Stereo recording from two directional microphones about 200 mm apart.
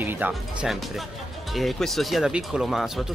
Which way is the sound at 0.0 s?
10° right (ahead or behind).